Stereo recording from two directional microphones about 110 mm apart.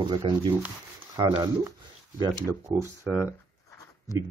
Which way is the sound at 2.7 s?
20° right (ahead or behind).